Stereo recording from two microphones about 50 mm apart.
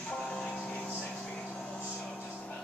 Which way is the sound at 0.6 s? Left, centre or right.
Left.